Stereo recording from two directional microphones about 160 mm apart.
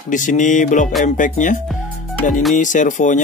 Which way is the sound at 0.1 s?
50° left (ahead or behind).